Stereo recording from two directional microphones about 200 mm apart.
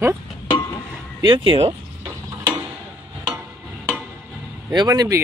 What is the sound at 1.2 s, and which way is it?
Speech, 25° right (ahead or behind).